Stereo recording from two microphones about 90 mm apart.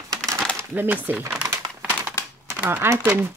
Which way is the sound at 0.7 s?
20° right (ahead or behind).